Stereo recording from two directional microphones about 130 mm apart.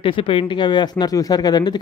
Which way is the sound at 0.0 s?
40° left (ahead or behind).